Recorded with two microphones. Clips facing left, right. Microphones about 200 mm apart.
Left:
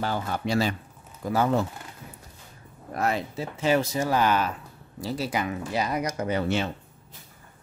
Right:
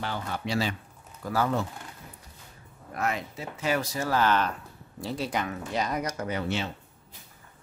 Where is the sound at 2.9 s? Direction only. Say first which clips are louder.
Left 4 dB; 35° left (ahead or behind); by 6.2 s 10° left (ahead or behind).